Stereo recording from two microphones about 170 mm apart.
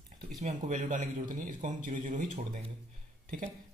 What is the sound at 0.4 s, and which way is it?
A man's voice, 45° right (ahead or behind).